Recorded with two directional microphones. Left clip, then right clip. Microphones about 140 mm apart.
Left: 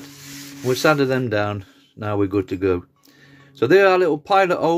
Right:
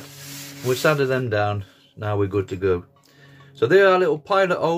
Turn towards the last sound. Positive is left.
turn(degrees=50)  # may be behind; listen again after turning